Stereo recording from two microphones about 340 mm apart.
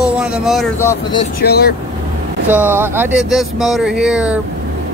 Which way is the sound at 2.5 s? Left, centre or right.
Centre.